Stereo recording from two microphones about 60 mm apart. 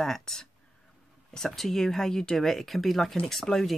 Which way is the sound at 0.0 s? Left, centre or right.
Centre.